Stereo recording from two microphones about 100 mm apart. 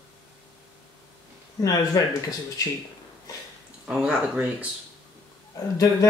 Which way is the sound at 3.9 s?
10° right (ahead or behind).